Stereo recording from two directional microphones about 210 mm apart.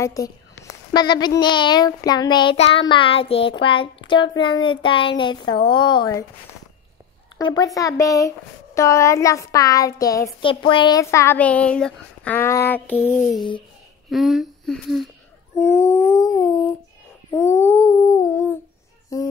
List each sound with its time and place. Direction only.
0.0 s speech: 15° left (ahead or behind)
7.3 s speech: 20° left (ahead or behind); by 15.0 s centre (ahead or behind)
15.7 s a sound: 10° left (ahead or behind)
19.1 s music: 15° left (ahead or behind)